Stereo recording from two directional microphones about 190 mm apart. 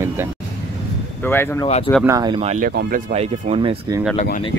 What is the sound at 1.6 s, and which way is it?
Speech, 35° left (ahead or behind).